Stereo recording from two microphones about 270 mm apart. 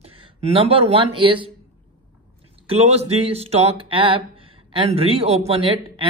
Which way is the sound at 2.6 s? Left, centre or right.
Right.